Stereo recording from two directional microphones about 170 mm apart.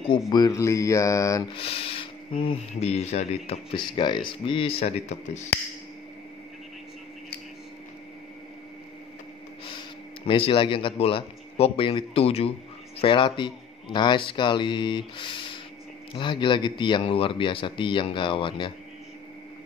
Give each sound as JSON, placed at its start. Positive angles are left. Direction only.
{"t": 0.3, "sound": "a man's voice", "side_deg": 20}
{"t": 1.5, "sound": "speech", "side_deg": 35}
{"t": 3.7, "sound": "speech", "side_deg": 30}
{"t": 10.2, "sound": "a man's voice", "side_deg": 30}